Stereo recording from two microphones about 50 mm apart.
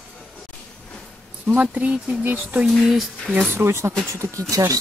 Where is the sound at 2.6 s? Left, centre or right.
Centre.